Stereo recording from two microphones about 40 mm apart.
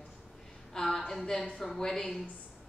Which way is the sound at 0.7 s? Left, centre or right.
Centre.